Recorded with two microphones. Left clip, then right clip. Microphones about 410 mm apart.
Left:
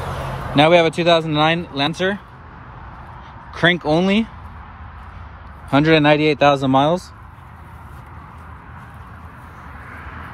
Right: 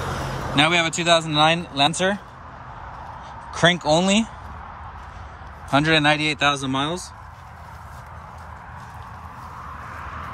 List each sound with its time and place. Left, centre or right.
0.6 s speech: centre
3.5 s speech: centre
5.7 s speech: centre